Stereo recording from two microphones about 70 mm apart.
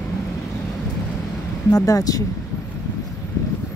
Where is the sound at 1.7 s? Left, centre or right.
Left.